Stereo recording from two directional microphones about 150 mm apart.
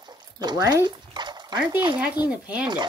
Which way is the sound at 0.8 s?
30° right (ahead or behind).